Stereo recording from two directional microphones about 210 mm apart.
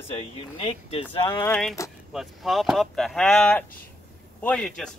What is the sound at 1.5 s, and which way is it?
Speech, centre (ahead or behind).